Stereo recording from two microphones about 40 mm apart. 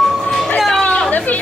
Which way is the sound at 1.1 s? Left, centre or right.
Left.